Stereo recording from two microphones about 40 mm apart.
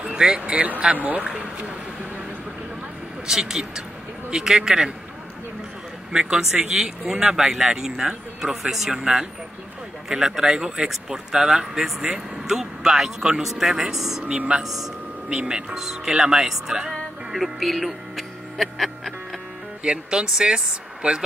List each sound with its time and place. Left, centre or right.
0.0 s speech: centre
3.3 s speech: centre
6.1 s speech: centre
9.0 s speech: right
10.0 s speech: centre
15.2 s speech: right
17.3 s speech: centre
19.8 s speech: right